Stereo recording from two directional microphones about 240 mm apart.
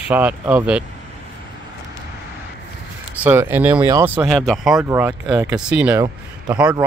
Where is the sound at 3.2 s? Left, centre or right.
Centre.